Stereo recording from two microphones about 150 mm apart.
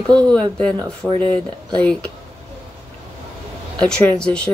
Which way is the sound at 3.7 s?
5° left (ahead or behind).